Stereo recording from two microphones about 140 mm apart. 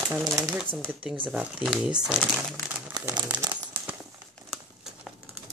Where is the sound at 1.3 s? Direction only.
5° right (ahead or behind).